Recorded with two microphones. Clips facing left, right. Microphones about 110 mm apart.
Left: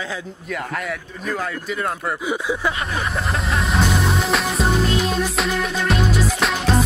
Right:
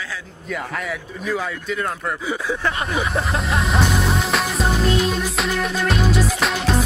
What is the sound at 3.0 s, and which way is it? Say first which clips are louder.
Speech: right 2 dB; centre (ahead or behind).